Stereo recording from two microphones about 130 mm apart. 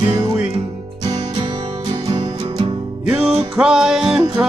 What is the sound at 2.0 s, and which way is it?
Music, 40° right (ahead or behind).